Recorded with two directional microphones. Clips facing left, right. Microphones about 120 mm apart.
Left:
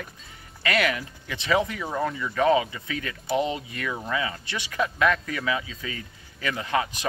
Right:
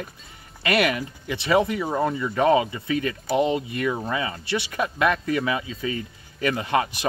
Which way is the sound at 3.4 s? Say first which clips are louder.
Right 5 dB; 20° right (ahead or behind).